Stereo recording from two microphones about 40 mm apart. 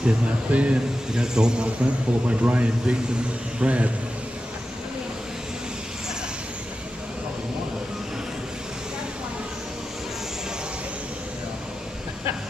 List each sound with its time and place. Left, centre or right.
0.0 s speech: right
1.1 s a man's voice: centre
1.8 s speech: right